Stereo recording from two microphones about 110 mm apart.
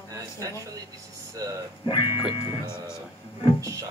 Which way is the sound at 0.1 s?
30° right (ahead or behind).